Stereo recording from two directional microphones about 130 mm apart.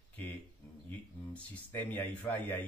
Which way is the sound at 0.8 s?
15° left (ahead or behind).